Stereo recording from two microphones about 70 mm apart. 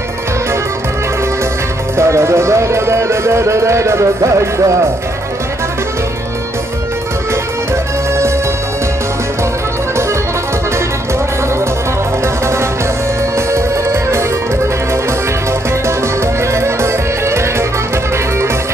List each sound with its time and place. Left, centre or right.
2.0 s speech: right
7.7 s music: right
13.5 s music: right
16.5 s music: right